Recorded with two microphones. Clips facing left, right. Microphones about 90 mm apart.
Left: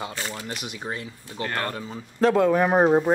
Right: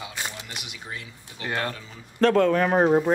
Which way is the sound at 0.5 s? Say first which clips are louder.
Left 6 dB; 40° left (ahead or behind).